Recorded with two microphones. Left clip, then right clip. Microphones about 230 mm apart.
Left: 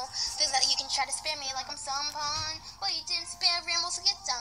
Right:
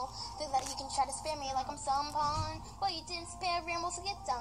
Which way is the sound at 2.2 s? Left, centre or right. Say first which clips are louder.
Left 1 dB; centre.